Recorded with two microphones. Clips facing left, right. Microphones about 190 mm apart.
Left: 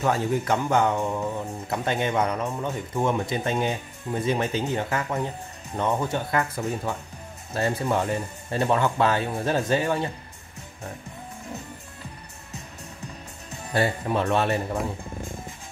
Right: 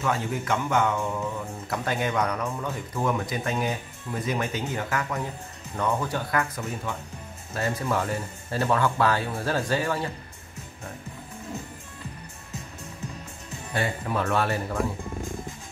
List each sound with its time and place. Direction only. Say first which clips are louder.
0.0 s speech: left 4 dB; 35° left (ahead or behind)
1.7 s speech: left 2 dB; 25° left (ahead or behind)
13.7 s speech: left 4 dB; 35° left (ahead or behind)
14.1 s speech: left 2 dB; 25° left (ahead or behind)